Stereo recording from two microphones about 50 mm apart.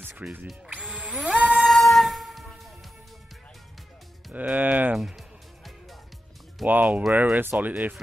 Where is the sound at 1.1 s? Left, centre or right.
Right.